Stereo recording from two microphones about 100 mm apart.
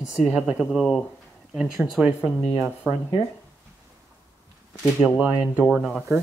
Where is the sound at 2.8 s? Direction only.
25° right (ahead or behind).